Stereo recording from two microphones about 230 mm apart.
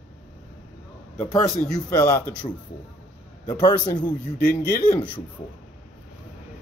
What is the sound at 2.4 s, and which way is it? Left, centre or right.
A man's voice, left.